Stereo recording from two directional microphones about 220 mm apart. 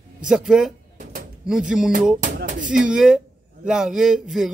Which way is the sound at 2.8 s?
Centre (ahead or behind).